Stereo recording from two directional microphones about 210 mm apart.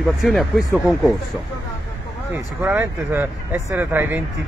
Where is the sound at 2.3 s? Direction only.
10° right (ahead or behind).